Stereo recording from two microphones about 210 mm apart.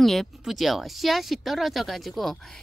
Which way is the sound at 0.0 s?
Centre (ahead or behind).